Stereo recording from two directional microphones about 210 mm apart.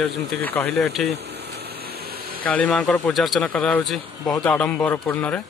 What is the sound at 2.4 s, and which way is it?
A man's voice, 5° left (ahead or behind).